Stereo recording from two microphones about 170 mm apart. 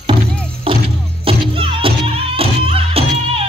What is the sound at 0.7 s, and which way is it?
Music, 30° right (ahead or behind).